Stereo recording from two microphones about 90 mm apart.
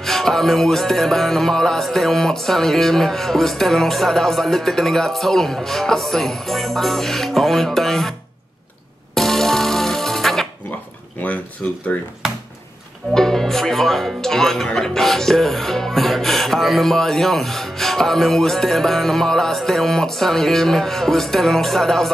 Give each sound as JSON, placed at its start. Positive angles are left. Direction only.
{"t": 0.0, "sound": "speech", "side_deg": 5}
{"t": 9.1, "sound": "music", "side_deg": 5}
{"t": 11.6, "sound": "speech", "side_deg": 15}
{"t": 13.1, "sound": "speech", "side_deg": 5}